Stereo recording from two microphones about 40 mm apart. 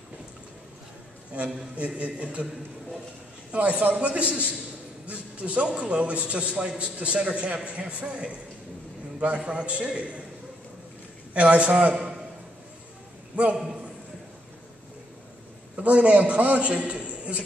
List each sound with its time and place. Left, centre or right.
1.3 s a man's voice: right
3.5 s a man's voice: right
9.4 s a man's voice: right
11.3 s a man's voice: right
15.7 s a man's voice: right